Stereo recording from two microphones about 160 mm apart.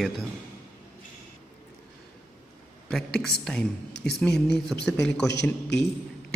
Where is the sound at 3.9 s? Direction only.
90° left.